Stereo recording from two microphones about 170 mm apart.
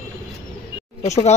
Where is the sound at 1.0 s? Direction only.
40° left (ahead or behind).